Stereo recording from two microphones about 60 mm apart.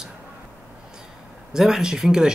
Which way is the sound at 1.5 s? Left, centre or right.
Centre.